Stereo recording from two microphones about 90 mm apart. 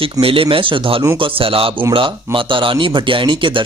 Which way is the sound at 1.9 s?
70° right (ahead or behind).